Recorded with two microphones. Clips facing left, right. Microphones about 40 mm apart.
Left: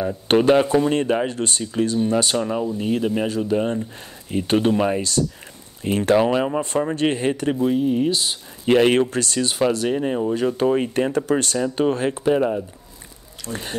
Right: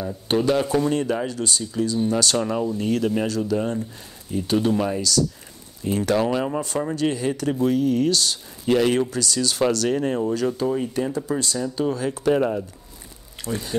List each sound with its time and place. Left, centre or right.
0.3 s speech: left
0.7 s speech: left
0.9 s speech: left
2.3 s speech: centre; by 3.8 s left
4.3 s speech: left
6.1 s speech: left
7.0 s speech: left
7.7 s speech: left
9.6 s speech: centre
10.6 s speech: left
12.3 s speech: centre
13.5 s speech: left